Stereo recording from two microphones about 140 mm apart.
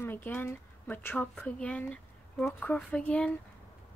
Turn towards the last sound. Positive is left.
turn(degrees=10)  # may be behind; listen again after turning